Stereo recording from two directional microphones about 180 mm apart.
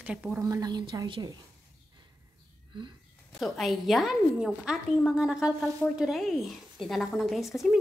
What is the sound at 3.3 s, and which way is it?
A woman's voice, centre (ahead or behind).